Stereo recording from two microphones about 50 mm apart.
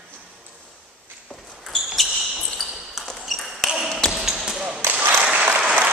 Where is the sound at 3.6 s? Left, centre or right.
Centre.